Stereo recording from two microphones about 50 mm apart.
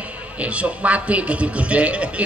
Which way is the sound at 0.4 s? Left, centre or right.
Right.